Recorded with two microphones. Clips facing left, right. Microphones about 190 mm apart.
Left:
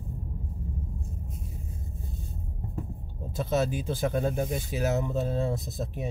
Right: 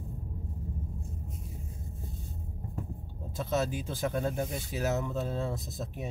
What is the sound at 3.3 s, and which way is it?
Speech, 30° left (ahead or behind).